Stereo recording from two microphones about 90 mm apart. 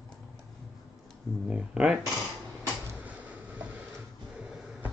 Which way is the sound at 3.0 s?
15° right (ahead or behind).